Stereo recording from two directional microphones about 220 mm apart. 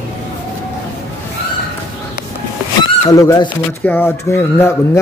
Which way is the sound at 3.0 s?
15° left (ahead or behind).